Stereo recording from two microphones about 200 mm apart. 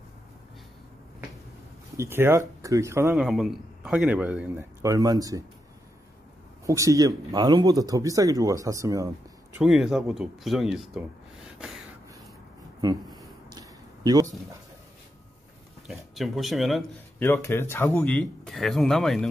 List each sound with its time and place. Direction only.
2.0 s speech: 10° right (ahead or behind)
3.3 s speech: centre (ahead or behind); by 5.4 s 20° right (ahead or behind)
6.6 s speech: 15° right (ahead or behind)
9.6 s speech: centre (ahead or behind)
12.8 s a sound: 20° right (ahead or behind)
15.9 s speech: centre (ahead or behind)
17.2 s speech: 10° left (ahead or behind)